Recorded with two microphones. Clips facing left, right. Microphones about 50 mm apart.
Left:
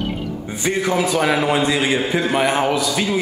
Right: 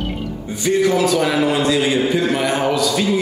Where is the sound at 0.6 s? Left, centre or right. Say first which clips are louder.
Right 4 dB; centre.